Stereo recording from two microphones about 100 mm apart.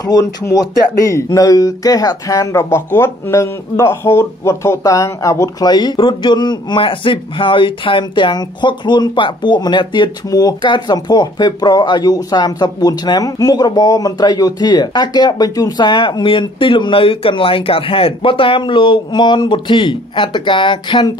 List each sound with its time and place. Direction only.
0.0 s speech: 40° left (ahead or behind)
5.7 s speech: 45° left (ahead or behind)